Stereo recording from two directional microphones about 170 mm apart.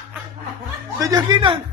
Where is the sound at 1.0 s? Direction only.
25° right (ahead or behind).